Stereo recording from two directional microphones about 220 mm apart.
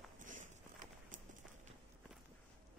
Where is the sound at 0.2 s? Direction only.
35° right (ahead or behind).